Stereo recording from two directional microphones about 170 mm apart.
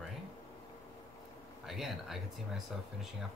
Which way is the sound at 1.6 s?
Centre (ahead or behind).